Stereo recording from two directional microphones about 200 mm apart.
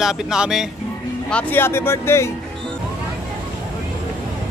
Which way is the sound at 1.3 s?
10° left (ahead or behind).